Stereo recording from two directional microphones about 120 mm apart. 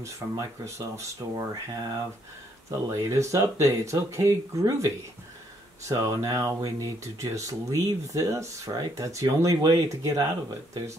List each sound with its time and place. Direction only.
0.0 s speech: 25° right (ahead or behind)